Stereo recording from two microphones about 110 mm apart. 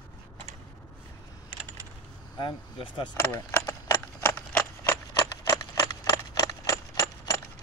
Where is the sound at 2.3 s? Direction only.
45° left (ahead or behind).